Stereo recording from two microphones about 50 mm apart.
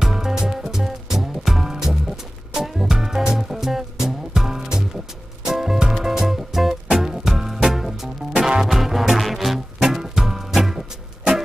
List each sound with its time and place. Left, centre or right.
0.0 s music: centre